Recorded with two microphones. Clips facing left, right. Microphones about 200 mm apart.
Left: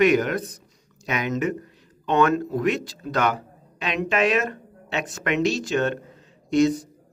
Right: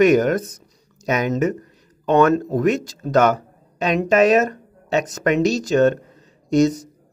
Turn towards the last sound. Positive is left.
turn(degrees=-40)  # may be behind; listen again after turning